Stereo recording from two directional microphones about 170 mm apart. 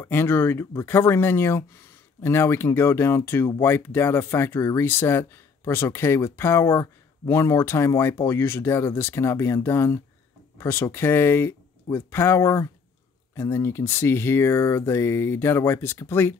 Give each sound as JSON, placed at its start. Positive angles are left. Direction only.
{"t": 0.0, "sound": "speech", "side_deg": 15}